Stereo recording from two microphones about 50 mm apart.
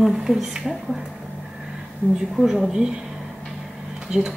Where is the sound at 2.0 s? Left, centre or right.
Right.